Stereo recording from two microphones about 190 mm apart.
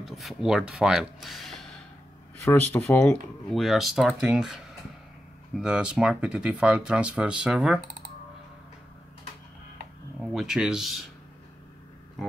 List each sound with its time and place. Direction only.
0.0 s speech: centre (ahead or behind)
10.2 s speech: 5° right (ahead or behind)